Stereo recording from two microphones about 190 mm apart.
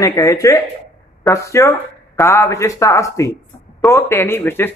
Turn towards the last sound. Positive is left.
turn(degrees=10)  # may be behind; listen again after turning